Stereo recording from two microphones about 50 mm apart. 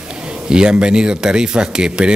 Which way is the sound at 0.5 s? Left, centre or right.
Centre.